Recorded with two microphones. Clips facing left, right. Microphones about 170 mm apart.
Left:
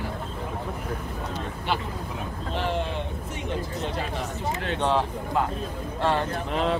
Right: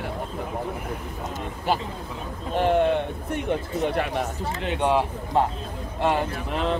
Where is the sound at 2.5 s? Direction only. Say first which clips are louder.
Right 9 dB; 55° right (ahead or behind).